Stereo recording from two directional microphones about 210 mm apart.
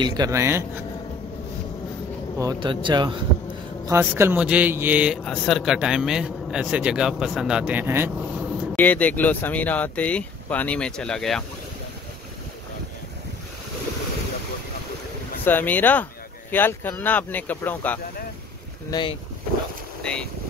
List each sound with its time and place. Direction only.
0.0 s speech: 20° right (ahead or behind)
2.3 s speech: 20° right (ahead or behind)
3.8 s speech: 10° right (ahead or behind)
8.7 s speech: 5° left (ahead or behind)
15.4 s speech: 10° left (ahead or behind)
18.9 s speech: 20° left (ahead or behind)
20.0 s speech: 5° left (ahead or behind)